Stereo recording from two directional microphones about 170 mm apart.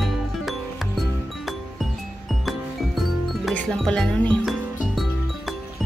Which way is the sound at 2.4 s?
Centre (ahead or behind).